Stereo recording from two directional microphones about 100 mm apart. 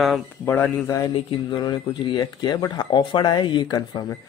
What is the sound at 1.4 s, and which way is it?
Speech, 50° left (ahead or behind).